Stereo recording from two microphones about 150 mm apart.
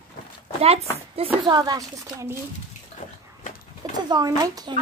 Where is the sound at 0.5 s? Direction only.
45° right (ahead or behind).